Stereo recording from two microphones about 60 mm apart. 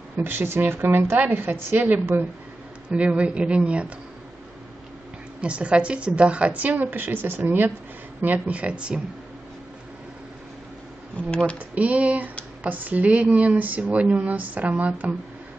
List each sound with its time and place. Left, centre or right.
0.2 s speech: right
3.0 s speech: centre
5.4 s speech: centre
11.1 s speech: centre
11.5 s speech: right